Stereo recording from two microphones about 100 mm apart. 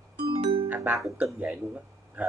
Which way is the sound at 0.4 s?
90° right.